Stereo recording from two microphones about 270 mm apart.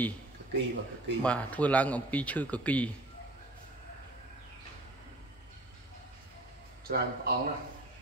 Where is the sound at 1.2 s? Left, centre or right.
Centre.